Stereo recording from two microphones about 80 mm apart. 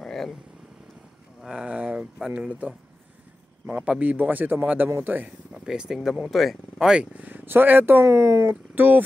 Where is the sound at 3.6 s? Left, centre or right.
Centre.